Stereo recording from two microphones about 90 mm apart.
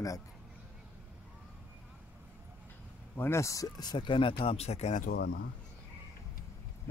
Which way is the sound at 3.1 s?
25° left (ahead or behind).